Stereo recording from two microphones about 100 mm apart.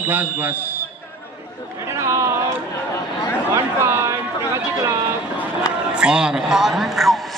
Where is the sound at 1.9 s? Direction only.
30° right (ahead or behind).